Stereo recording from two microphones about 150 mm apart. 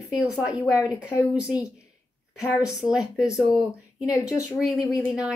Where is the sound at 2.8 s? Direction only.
5° right (ahead or behind).